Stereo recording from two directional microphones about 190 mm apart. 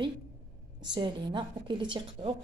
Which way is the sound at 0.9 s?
25° right (ahead or behind).